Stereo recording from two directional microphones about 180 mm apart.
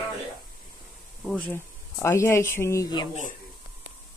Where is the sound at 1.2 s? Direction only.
5° left (ahead or behind).